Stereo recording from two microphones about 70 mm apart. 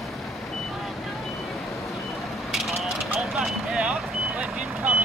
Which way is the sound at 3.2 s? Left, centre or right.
Centre.